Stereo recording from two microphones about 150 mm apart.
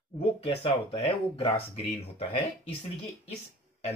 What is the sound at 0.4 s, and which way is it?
Speech, 40° left (ahead or behind).